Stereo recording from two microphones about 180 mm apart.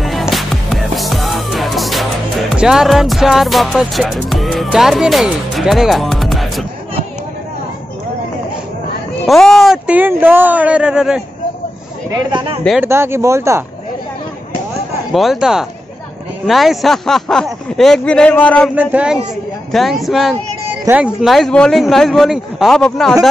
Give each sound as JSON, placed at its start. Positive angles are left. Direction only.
{"t": 0.0, "sound": "music", "side_deg": 0}
{"t": 9.2, "sound": "speech", "side_deg": 0}
{"t": 12.3, "sound": "speech", "side_deg": -25}
{"t": 12.8, "sound": "speech", "side_deg": -15}
{"t": 15.1, "sound": "speech", "side_deg": 0}
{"t": 18.8, "sound": "speech", "side_deg": -5}